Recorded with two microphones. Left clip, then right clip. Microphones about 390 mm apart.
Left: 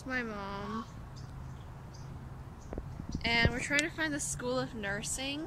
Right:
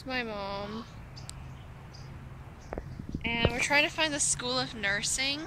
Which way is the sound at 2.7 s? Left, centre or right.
Right.